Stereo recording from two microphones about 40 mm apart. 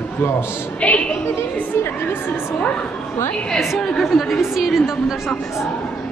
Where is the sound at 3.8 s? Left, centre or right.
Centre.